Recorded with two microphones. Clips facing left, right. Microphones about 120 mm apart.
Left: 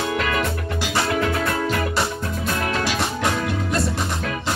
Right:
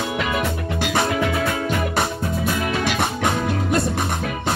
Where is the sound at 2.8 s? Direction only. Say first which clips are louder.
Right 1 dB; 55° right (ahead or behind).